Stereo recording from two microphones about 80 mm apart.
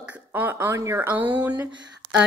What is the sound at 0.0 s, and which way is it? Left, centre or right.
Speech, right.